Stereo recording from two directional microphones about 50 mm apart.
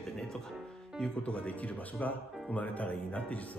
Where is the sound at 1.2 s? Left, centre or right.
Left.